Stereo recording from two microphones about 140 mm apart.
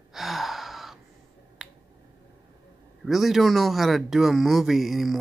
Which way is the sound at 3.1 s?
Centre (ahead or behind).